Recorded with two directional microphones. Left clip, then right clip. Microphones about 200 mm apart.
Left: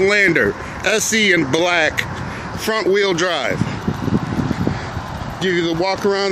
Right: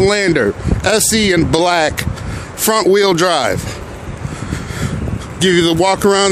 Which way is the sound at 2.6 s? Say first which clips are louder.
Right 5 dB; 45° right (ahead or behind).